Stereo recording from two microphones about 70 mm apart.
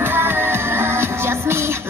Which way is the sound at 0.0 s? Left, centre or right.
Right.